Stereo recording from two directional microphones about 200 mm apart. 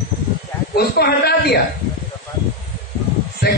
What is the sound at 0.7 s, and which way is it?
Speech, 50° left (ahead or behind).